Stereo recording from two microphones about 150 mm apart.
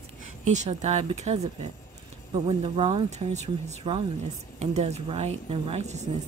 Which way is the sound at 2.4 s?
40° right (ahead or behind).